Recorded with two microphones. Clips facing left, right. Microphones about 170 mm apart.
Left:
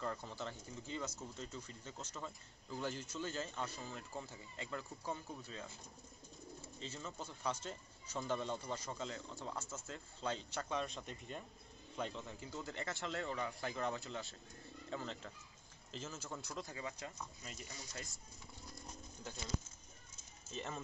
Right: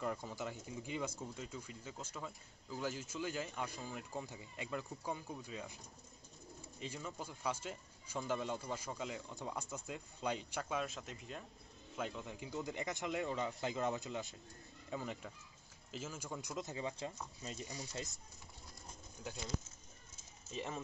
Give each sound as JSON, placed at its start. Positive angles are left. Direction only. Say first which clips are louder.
{"t": 0.0, "sound": "speech", "louder": "right 2 dB", "side_deg": -10}
{"t": 6.8, "sound": "speech", "louder": "right 2 dB", "side_deg": -10}
{"t": 17.6, "sound": "speech", "louder": "right 5 dB", "side_deg": -20}
{"t": 20.5, "sound": "speech", "louder": "right 2 dB", "side_deg": -5}